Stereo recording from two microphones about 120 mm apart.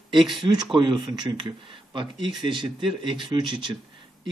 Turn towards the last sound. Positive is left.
turn(degrees=-40)  # may be behind; listen again after turning